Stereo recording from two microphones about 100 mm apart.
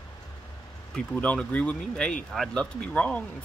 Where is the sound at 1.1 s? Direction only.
15° left (ahead or behind).